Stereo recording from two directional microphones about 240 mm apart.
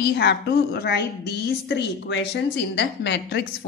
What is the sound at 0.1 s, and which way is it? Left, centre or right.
A woman's voice, left.